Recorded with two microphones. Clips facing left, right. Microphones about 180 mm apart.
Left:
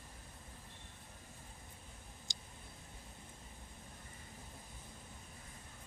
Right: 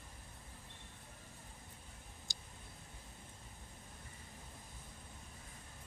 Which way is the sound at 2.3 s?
20° left (ahead or behind).